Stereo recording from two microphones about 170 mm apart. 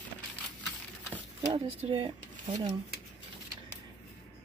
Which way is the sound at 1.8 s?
30° right (ahead or behind).